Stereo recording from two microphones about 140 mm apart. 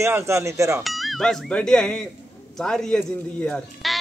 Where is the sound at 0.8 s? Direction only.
Centre (ahead or behind).